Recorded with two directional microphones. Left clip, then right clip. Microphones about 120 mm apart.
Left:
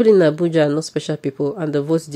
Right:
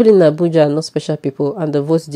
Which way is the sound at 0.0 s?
25° right (ahead or behind).